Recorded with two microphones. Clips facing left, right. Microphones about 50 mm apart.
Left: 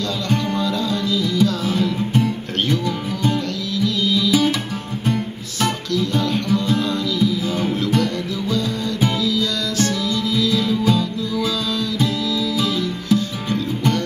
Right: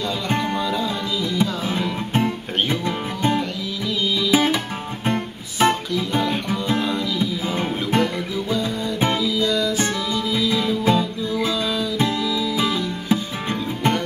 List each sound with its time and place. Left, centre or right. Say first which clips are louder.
0.3 s music: left 1 dB; right
5.6 s music: right 2 dB; right